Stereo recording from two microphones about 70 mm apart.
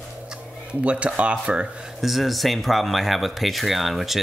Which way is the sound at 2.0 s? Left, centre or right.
Centre.